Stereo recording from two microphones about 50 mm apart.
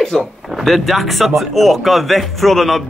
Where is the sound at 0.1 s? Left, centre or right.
Centre.